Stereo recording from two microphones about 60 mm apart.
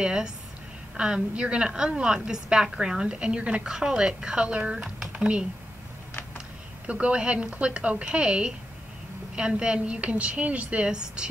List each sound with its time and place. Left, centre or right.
0.0 s a woman's voice: centre
6.9 s a woman's voice: right